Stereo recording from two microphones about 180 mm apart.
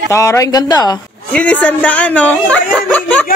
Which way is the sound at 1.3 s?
5° left (ahead or behind).